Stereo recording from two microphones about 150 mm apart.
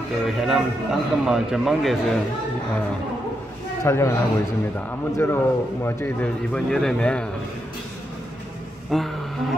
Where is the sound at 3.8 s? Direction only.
20° left (ahead or behind).